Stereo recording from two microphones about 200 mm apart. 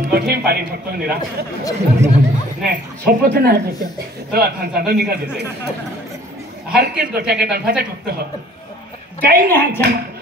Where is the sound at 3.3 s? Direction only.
50° right (ahead or behind).